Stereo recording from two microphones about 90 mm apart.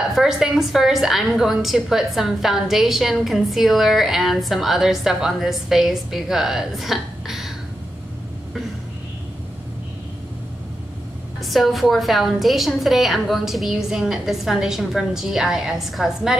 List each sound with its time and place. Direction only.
0.1 s a woman's voice: 5° right (ahead or behind)
11.4 s a woman's voice: centre (ahead or behind)